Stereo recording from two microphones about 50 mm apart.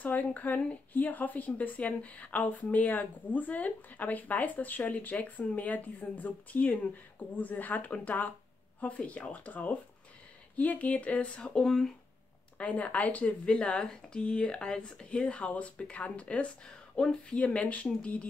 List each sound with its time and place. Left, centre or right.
0.0 s speech: left
11.6 s speech: centre
12.5 s speech: left